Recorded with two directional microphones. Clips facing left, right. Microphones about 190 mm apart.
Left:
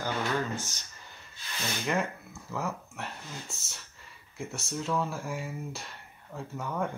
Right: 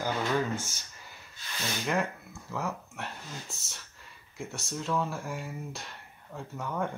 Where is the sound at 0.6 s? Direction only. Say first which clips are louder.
Even; 10° right (ahead or behind).